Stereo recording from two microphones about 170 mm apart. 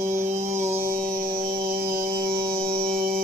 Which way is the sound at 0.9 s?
55° right (ahead or behind).